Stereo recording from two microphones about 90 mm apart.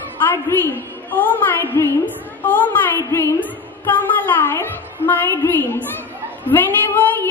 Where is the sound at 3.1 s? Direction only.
30° left (ahead or behind).